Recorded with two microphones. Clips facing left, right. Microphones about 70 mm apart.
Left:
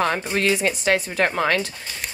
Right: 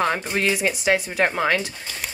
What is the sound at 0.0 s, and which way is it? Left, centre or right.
A woman's voice, centre.